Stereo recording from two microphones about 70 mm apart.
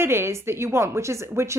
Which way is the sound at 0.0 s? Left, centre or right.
Right.